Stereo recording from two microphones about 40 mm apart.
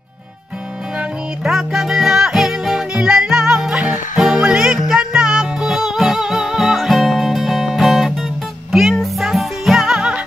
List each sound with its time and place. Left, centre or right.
1.4 s music: centre
9.8 s music: centre